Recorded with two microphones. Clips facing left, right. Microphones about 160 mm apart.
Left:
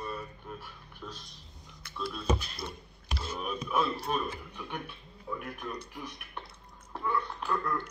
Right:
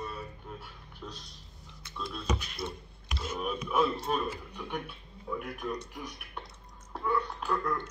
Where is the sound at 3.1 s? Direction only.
30° left (ahead or behind).